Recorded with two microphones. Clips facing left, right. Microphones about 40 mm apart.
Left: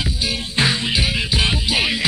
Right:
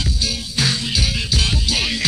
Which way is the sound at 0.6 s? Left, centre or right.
Left.